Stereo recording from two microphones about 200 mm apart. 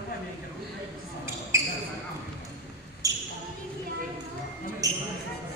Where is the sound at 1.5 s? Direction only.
15° right (ahead or behind).